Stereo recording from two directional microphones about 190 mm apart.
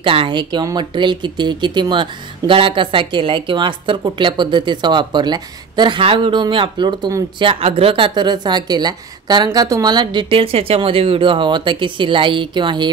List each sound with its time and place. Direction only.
0.0 s speech: 25° right (ahead or behind)